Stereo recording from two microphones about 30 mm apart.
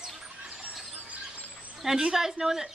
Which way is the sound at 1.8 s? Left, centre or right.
Centre.